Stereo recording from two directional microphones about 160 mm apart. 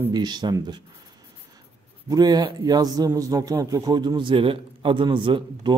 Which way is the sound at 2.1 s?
25° right (ahead or behind).